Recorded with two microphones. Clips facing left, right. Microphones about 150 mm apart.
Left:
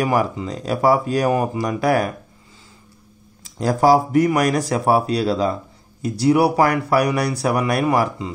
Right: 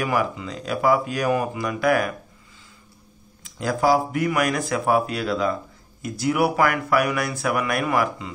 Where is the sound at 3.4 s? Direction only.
40° left (ahead or behind).